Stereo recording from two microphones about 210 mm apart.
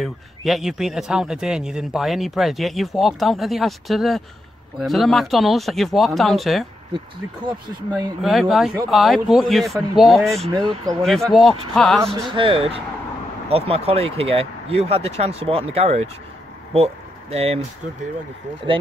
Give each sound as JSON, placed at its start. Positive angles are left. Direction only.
{"t": 0.0, "sound": "speech", "side_deg": 0}
{"t": 8.2, "sound": "speech", "side_deg": 0}
{"t": 12.1, "sound": "speech", "side_deg": -25}